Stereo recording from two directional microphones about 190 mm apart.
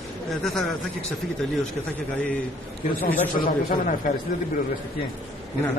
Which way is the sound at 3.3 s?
45° left (ahead or behind).